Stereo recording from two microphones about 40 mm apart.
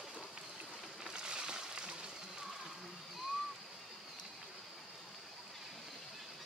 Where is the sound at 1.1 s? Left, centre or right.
Right.